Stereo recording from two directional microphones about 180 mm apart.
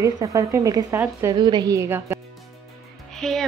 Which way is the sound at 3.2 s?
Centre (ahead or behind).